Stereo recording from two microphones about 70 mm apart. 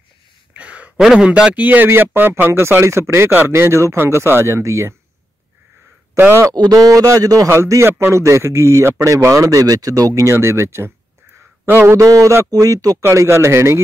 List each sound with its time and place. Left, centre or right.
0.6 s a sound: centre
0.9 s a man's voice: centre; by 4.9 s right
6.1 s a man's voice: right
6.6 s a man's voice: right
7.4 s a man's voice: right
9.6 s a man's voice: right
10.3 s a man's voice: right
12.1 s a man's voice: right
13.0 s a man's voice: right